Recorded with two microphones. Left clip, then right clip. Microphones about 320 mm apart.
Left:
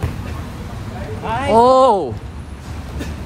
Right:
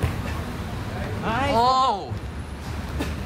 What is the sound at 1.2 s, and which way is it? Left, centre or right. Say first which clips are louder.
Speech: left 4 dB; left.